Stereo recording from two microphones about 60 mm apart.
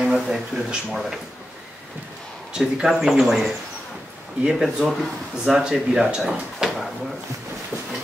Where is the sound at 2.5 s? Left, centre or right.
Centre.